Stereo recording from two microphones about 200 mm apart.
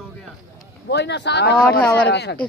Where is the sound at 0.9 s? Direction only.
60° left (ahead or behind).